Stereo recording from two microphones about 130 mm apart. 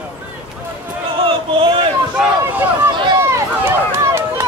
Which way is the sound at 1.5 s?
40° right (ahead or behind).